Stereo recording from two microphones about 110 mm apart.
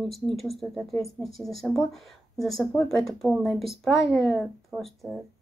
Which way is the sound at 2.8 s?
30° left (ahead or behind).